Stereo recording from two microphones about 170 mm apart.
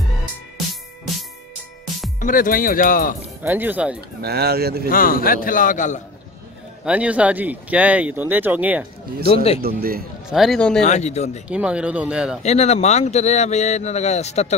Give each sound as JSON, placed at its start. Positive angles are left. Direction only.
{"t": 2.1, "sound": "a man's voice", "side_deg": 50}
{"t": 3.4, "sound": "speech", "side_deg": -10}
{"t": 4.2, "sound": "speech", "side_deg": -70}
{"t": 4.8, "sound": "a man's voice", "side_deg": 55}
{"t": 6.8, "sound": "speech", "side_deg": -5}
{"t": 9.6, "sound": "speech", "side_deg": -60}
{"t": 10.3, "sound": "speech", "side_deg": 0}
{"t": 10.8, "sound": "speech", "side_deg": 40}
{"t": 11.4, "sound": "speech", "side_deg": -5}
{"t": 12.4, "sound": "speech", "side_deg": 40}